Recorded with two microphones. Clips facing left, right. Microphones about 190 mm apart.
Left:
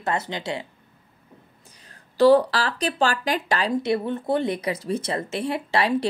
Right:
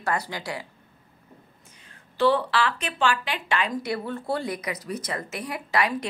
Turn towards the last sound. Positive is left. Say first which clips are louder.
# left 4 dB
turn(degrees=30)  # may be behind; listen again after turning